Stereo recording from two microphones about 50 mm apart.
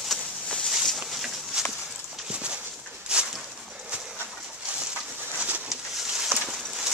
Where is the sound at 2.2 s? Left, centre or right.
Centre.